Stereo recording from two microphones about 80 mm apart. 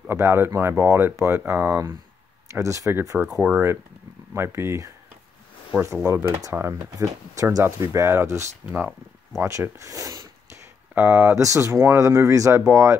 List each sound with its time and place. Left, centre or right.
0.1 s speech: right
2.5 s speech: right
2.9 s speech: right
3.3 s speech: centre
4.3 s speech: right
6.7 s speech: right
8.6 s speech: right
9.4 s speech: right
11.3 s speech: right